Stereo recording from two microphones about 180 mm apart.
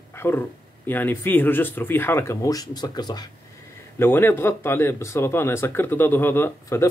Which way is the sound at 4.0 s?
10° left (ahead or behind).